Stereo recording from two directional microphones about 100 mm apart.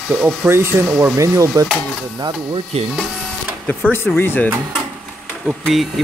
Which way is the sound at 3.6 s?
20° left (ahead or behind).